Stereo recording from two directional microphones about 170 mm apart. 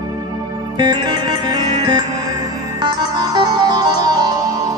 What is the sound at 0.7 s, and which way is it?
Music, 25° right (ahead or behind).